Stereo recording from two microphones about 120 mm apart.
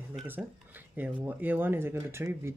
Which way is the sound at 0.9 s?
15° right (ahead or behind).